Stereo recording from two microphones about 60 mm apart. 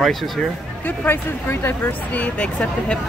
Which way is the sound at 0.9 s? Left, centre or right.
Left.